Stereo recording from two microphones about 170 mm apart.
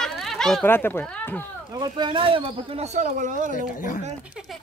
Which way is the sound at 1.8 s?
30° right (ahead or behind).